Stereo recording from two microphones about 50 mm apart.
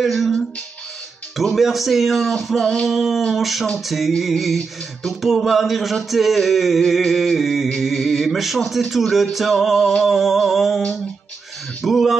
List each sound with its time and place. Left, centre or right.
0.0 s music: centre
1.3 s music: centre
2.6 s a sound: centre
2.9 s music: centre
11.8 s music: centre